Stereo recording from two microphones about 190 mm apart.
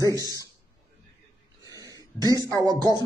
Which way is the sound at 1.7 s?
20° right (ahead or behind).